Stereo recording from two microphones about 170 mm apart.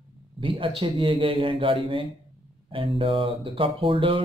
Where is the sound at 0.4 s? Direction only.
30° right (ahead or behind).